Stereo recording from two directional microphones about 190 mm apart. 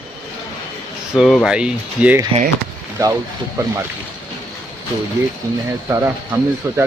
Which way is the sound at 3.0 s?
15° right (ahead or behind).